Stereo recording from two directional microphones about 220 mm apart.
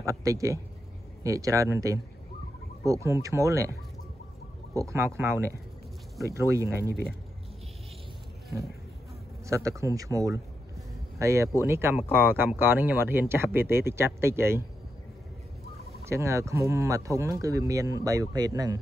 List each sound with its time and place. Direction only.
0.0 s speech: 15° right (ahead or behind)
4.7 s speech: 15° right (ahead or behind)
9.5 s speech: 15° right (ahead or behind)
16.0 s speech: 15° right (ahead or behind)